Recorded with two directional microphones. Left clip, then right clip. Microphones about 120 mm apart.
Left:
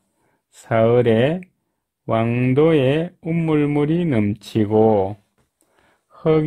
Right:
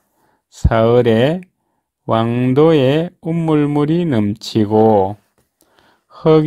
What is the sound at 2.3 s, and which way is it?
Speech, 5° right (ahead or behind).